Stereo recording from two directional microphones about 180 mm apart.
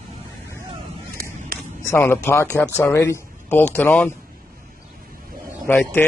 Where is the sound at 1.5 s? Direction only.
55° right (ahead or behind).